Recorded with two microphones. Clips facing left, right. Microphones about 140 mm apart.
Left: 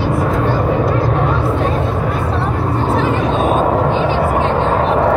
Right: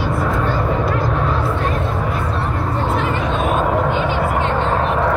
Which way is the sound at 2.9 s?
40° left (ahead or behind).